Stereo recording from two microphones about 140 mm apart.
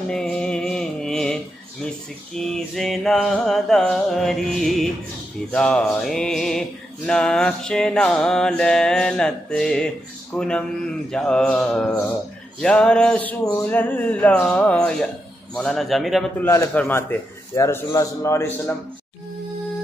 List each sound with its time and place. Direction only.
0.1 s carnatic music: 5° left (ahead or behind)
2.3 s music: 5° left (ahead or behind)
12.5 s speech: 5° left (ahead or behind)
15.5 s music: 5° left (ahead or behind)
16.3 s a man's voice: 15° left (ahead or behind)